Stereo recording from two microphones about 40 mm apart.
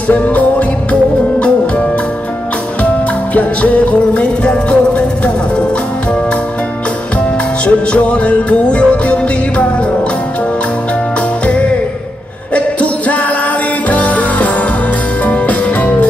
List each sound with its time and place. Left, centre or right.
0.1 s music: left
3.3 s music: left
7.6 s music: left
11.4 s music: left